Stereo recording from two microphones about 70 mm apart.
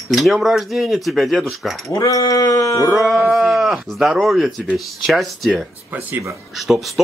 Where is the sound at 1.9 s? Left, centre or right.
Left.